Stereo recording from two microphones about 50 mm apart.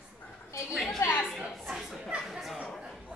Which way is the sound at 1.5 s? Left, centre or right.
Centre.